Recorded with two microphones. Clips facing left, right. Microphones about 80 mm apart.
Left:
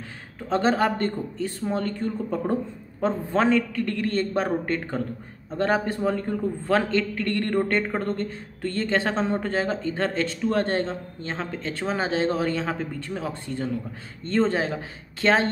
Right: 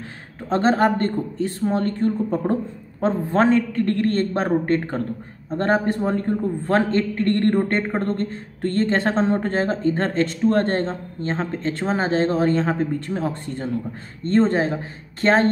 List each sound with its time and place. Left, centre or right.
0.5 s a woman's voice: right